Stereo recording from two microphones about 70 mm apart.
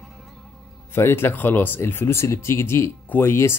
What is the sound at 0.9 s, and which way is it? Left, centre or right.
Speech, left.